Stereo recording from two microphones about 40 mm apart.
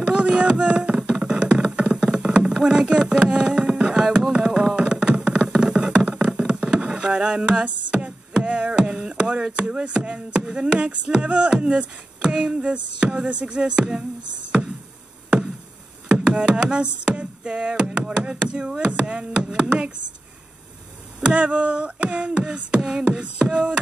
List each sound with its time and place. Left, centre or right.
0.0 s a sound: right
1.2 s music: right
2.6 s a sound: right
5.6 s music: centre
9.6 s beatboxing: right
16.1 s beatboxing: right
21.2 s a sound: right
22.4 s beatboxing: right
23.0 s beatboxing: right